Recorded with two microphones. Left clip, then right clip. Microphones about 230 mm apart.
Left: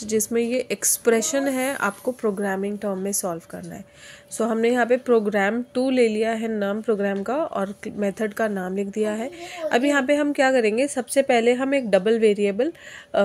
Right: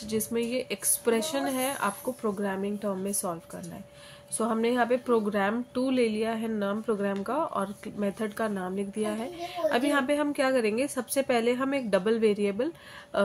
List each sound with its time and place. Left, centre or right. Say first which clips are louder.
0.0 s a woman's voice: left 7 dB; left
4.4 s a woman's voice: left 6 dB; left